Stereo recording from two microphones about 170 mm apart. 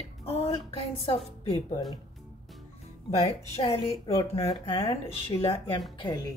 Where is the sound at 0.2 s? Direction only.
35° left (ahead or behind).